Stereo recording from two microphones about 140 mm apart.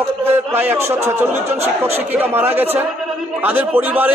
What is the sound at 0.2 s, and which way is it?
A man's voice, 15° right (ahead or behind).